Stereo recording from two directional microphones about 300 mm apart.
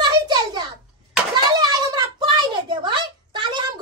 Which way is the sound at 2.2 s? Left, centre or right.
Centre.